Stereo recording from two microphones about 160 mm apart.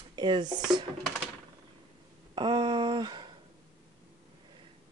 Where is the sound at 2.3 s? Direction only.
30° right (ahead or behind).